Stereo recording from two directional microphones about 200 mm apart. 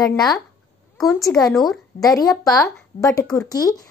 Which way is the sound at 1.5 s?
Centre (ahead or behind).